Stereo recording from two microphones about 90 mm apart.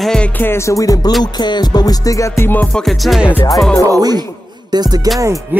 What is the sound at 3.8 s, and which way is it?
Music, 45° right (ahead or behind).